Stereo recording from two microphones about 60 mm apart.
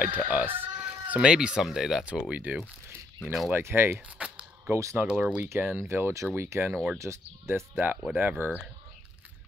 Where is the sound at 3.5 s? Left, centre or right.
Right.